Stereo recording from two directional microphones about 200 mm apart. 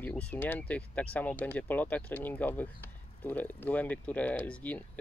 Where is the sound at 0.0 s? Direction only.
5° left (ahead or behind).